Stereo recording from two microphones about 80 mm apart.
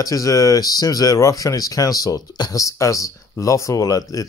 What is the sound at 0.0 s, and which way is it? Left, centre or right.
Speech, left.